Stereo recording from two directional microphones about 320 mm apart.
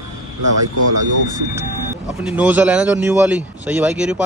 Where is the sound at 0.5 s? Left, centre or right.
Right.